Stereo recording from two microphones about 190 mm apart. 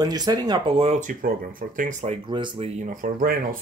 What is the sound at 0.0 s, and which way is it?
Speech, 20° right (ahead or behind).